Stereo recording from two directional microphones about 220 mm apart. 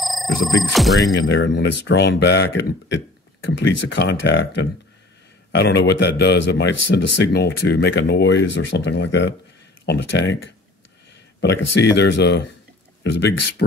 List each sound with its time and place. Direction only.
0.0 s music: centre (ahead or behind)
0.7 s speech: centre (ahead or behind)
1.3 s speech: 55° left (ahead or behind)